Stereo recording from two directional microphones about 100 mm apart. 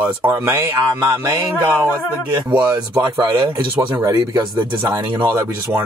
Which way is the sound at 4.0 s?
35° right (ahead or behind).